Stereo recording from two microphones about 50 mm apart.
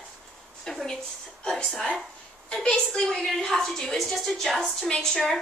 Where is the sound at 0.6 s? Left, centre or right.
Centre.